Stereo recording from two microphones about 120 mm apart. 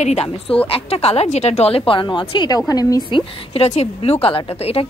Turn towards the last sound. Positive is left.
turn(degrees=55)  # may be behind; listen again after turning